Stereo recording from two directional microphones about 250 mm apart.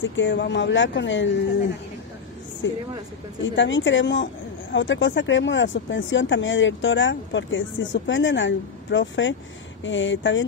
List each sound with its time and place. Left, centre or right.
0.0 s speech: left
2.6 s speech: left